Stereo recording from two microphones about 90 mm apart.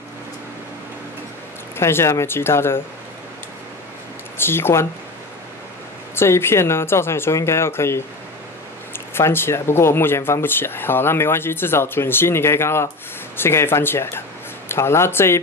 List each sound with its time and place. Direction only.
1.8 s speech: 30° left (ahead or behind)
4.4 s speech: 25° left (ahead or behind)
6.1 s speech: 30° left (ahead or behind)
9.1 s speech: 25° left (ahead or behind)